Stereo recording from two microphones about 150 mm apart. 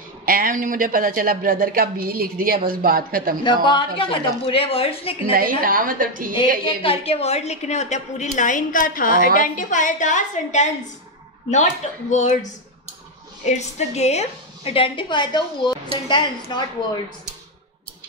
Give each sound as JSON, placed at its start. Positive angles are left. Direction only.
{"t": 0.2, "sound": "speech", "side_deg": -75}
{"t": 3.4, "sound": "a woman's voice", "side_deg": 30}
{"t": 5.3, "sound": "speech", "side_deg": -70}
{"t": 6.6, "sound": "a woman's voice", "side_deg": 40}
{"t": 12.1, "sound": "a woman's voice", "side_deg": 55}